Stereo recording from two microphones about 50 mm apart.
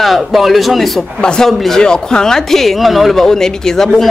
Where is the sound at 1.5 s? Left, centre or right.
Centre.